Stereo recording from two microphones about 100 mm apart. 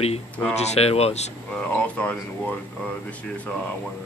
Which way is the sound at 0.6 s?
90° left.